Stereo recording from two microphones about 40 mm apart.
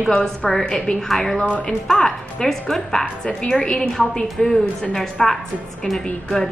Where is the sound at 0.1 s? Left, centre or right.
Centre.